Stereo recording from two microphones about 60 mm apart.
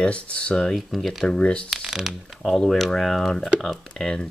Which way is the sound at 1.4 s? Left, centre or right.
Centre.